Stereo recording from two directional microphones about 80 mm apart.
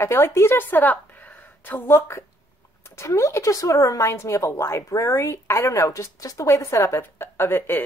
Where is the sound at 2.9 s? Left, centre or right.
Left.